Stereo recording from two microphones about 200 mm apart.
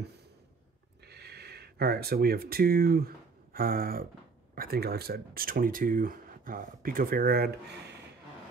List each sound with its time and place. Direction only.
1.0 s speech: 55° right (ahead or behind)